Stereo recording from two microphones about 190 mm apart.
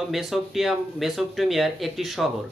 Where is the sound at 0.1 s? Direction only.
Centre (ahead or behind).